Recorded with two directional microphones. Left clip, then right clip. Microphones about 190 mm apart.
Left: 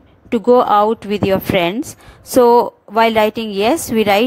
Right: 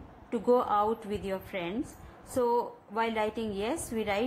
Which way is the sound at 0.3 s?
45° left (ahead or behind).